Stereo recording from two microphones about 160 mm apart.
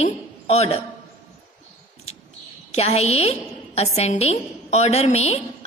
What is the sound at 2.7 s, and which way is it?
A woman's voice, 40° left (ahead or behind).